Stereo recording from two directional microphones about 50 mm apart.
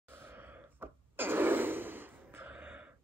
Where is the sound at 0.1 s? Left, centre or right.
Right.